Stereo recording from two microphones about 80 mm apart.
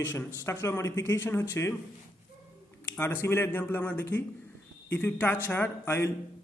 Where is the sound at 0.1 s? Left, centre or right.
Left.